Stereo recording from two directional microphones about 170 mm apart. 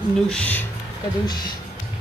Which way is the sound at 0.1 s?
5° left (ahead or behind).